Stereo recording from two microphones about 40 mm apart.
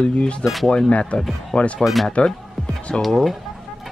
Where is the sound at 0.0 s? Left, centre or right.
Left.